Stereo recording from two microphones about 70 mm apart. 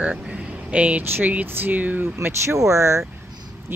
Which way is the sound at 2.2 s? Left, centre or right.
Right.